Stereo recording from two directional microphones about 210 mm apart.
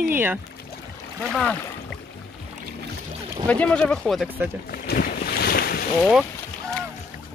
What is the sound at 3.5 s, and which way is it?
Speech, 5° left (ahead or behind).